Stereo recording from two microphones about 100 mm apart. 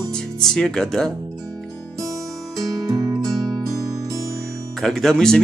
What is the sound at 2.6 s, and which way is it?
Music, 40° right (ahead or behind).